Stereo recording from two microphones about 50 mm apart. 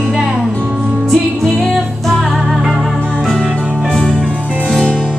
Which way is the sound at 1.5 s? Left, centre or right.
Centre.